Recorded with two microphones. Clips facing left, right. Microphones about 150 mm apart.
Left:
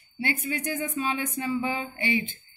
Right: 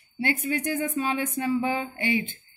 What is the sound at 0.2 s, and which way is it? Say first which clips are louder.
A woman's voice: right 3 dB; 55° right (ahead or behind).